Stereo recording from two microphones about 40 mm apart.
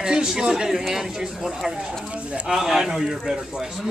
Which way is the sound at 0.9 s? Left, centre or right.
Centre.